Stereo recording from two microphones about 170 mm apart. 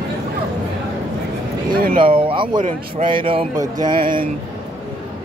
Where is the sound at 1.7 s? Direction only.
60° right (ahead or behind).